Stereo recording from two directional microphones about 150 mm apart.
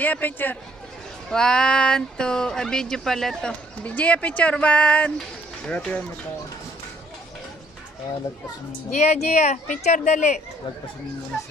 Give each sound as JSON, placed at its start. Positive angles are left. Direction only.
{"t": 0.0, "sound": "speech", "side_deg": 10}
{"t": 8.9, "sound": "speech", "side_deg": 50}